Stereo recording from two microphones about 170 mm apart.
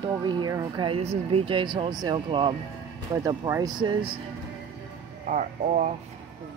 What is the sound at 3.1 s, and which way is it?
Speech, 20° right (ahead or behind).